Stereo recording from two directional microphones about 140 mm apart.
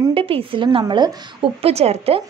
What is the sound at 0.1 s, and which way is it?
A woman's voice, 40° right (ahead or behind).